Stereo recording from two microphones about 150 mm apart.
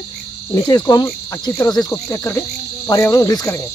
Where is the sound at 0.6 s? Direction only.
25° left (ahead or behind).